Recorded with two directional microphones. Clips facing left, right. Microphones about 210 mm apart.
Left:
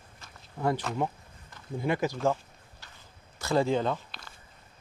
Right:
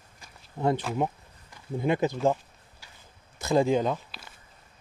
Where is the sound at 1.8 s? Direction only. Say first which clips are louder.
Right 3 dB; 20° right (ahead or behind).